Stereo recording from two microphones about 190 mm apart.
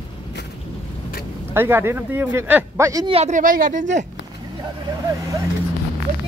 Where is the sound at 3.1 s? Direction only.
40° right (ahead or behind).